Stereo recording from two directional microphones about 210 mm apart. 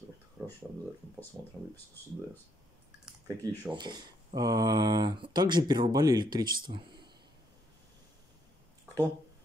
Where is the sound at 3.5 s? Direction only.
20° right (ahead or behind).